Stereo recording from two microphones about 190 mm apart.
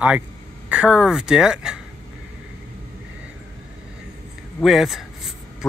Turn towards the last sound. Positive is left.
turn(degrees=0)  # may be behind; listen again after turning